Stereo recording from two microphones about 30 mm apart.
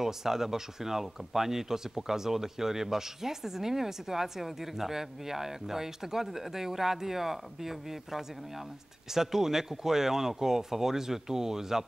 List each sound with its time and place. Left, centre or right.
0.0 s speech: centre